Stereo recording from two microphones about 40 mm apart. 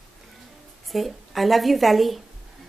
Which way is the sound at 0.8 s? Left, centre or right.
Centre.